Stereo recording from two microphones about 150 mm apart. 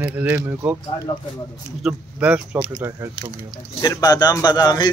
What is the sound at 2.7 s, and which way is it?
Speech, 20° right (ahead or behind).